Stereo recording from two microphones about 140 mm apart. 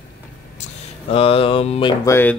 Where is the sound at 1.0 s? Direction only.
45° left (ahead or behind).